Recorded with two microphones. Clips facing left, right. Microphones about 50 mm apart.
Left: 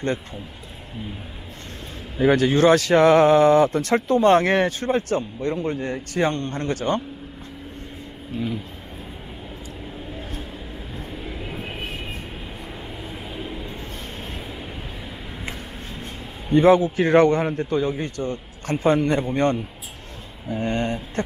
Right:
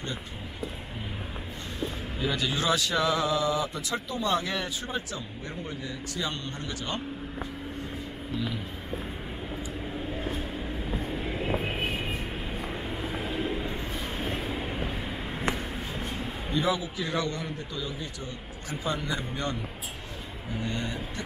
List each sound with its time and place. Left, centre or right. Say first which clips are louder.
2.1 s speech: left 13 dB; left
8.3 s vehicle: left 5 dB; left
10.1 s a sound: right 3 dB; right
11.1 s vehicle: right 3 dB; right
13.7 s vehicle: right 1 dB; right
16.5 s speech: left 13 dB; left